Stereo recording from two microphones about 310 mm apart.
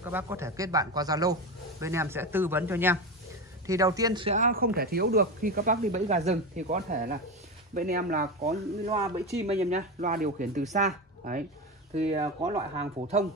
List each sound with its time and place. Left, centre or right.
0.0 s a man's voice: centre